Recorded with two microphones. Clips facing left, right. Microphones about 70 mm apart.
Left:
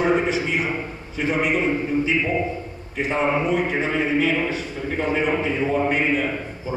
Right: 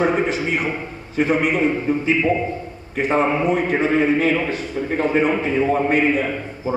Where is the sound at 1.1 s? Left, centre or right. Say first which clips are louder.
Right 3 dB; right.